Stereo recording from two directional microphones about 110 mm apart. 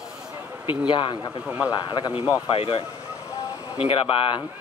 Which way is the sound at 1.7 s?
40° left (ahead or behind).